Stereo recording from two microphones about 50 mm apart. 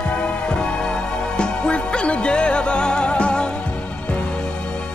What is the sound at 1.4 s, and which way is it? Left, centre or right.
Music, left.